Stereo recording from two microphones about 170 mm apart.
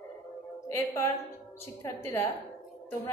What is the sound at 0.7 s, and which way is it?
A woman's voice, 15° left (ahead or behind).